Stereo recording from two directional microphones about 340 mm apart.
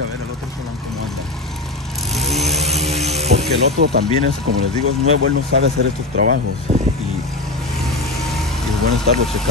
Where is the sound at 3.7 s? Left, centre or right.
Right.